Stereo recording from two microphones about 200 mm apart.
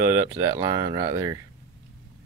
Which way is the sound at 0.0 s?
10° right (ahead or behind).